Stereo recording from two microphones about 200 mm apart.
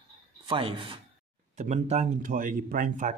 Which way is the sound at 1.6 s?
35° right (ahead or behind).